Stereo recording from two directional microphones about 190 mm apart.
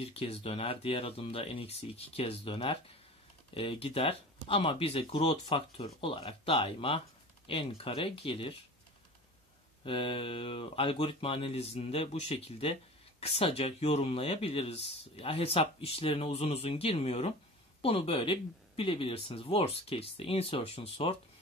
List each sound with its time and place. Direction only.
0.0 s speech: 30° left (ahead or behind)
9.8 s speech: 30° left (ahead or behind)